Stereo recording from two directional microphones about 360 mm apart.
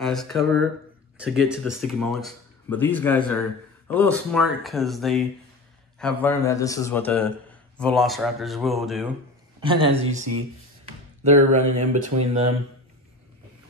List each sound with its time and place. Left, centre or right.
0.0 s speech: centre
9.6 s speech: centre
11.2 s speech: centre